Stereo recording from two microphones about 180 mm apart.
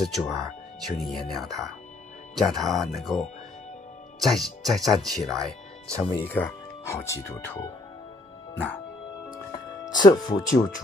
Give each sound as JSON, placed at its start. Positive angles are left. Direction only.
{"t": 0.0, "sound": "speech", "side_deg": 0}
{"t": 5.9, "sound": "speech", "side_deg": 30}
{"t": 6.2, "sound": "speech", "side_deg": 10}
{"t": 9.8, "sound": "speech", "side_deg": 20}